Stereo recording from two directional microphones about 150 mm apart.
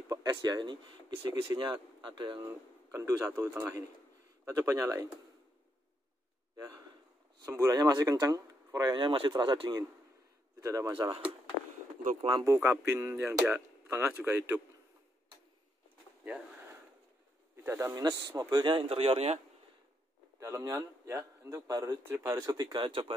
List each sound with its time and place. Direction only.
0.1 s speech: 25° right (ahead or behind)
2.4 s speech: 15° right (ahead or behind)
6.5 s speech: 20° right (ahead or behind)
12.3 s speech: 25° right (ahead or behind)
17.6 s speech: 20° right (ahead or behind)
18.7 s speech: 40° right (ahead or behind)
20.3 s speech: 20° right (ahead or behind)